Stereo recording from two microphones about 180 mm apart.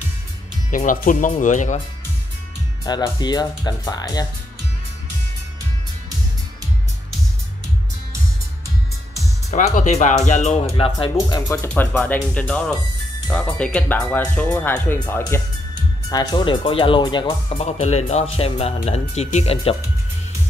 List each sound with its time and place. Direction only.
0.7 s speech: 45° left (ahead or behind)
2.8 s speech: 20° left (ahead or behind)
9.5 s speech: 40° left (ahead or behind)
10.8 s speech: 25° left (ahead or behind)